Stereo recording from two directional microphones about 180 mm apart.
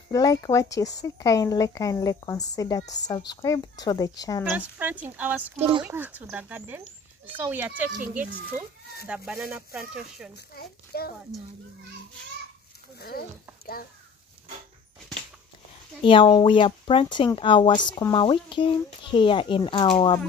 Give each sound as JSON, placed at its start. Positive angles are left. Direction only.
{"t": 0.1, "sound": "speech", "side_deg": 20}
{"t": 4.6, "sound": "speech", "side_deg": -10}
{"t": 5.6, "sound": "speech", "side_deg": -30}
{"t": 5.9, "sound": "speech", "side_deg": -10}
{"t": 9.0, "sound": "speech", "side_deg": -5}
{"t": 10.3, "sound": "a child's voice", "side_deg": 60}
{"t": 16.0, "sound": "speech", "side_deg": 30}